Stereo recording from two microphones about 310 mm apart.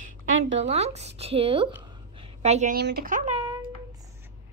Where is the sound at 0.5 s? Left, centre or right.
Right.